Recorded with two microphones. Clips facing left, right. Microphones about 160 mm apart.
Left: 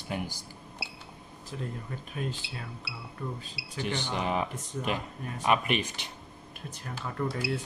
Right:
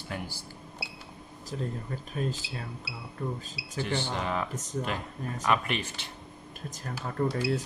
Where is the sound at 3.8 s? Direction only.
15° left (ahead or behind).